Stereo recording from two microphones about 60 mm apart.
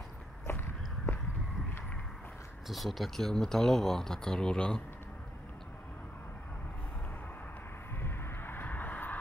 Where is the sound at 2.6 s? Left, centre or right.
Centre.